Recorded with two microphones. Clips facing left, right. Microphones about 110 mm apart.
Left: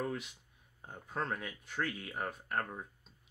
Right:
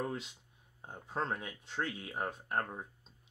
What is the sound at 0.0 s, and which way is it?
Speech, 25° right (ahead or behind).